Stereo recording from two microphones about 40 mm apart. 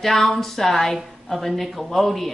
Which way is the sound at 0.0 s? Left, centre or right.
Centre.